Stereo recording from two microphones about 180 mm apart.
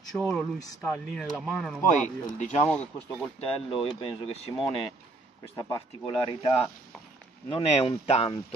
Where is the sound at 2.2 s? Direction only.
40° left (ahead or behind).